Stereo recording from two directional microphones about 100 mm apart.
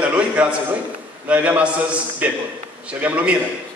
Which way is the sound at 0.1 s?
10° right (ahead or behind).